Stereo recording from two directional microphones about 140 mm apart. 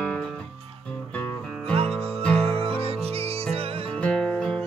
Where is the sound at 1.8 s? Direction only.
45° right (ahead or behind).